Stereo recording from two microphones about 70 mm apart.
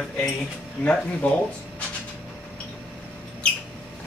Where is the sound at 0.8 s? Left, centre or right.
Centre.